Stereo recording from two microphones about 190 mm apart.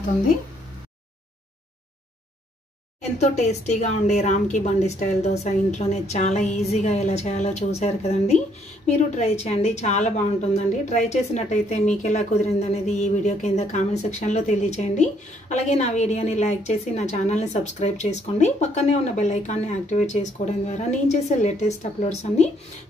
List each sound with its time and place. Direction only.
3.2 s a woman's voice: 35° left (ahead or behind)